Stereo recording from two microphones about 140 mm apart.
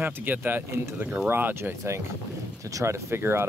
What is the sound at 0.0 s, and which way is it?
Speech, 15° right (ahead or behind).